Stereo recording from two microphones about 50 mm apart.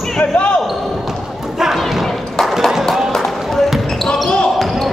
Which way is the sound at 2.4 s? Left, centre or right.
Centre.